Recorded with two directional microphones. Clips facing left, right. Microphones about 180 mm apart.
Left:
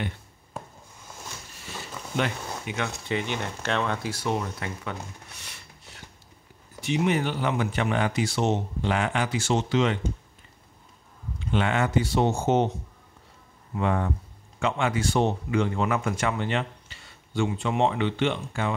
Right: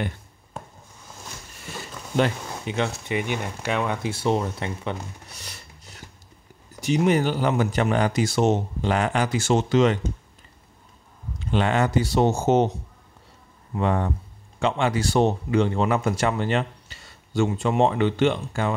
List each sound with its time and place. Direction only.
2.1 s speech: 30° right (ahead or behind)
3.1 s speech: 15° right (ahead or behind)
4.1 s speech: 30° right (ahead or behind)
5.3 s a sound: 40° right (ahead or behind)
6.8 s speech: 40° right (ahead or behind)
11.3 s speech: 35° right (ahead or behind)
13.7 s speech: 35° right (ahead or behind)